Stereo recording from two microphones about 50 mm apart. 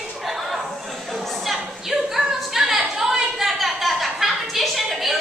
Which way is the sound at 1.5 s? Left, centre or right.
Centre.